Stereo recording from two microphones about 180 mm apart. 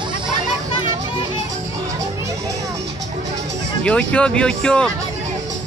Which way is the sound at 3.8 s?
5° left (ahead or behind).